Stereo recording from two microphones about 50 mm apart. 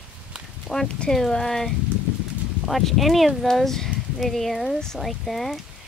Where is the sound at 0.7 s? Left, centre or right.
Centre.